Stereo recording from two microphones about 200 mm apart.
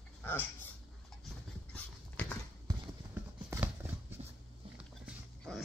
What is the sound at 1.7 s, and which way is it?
Dog, 5° left (ahead or behind).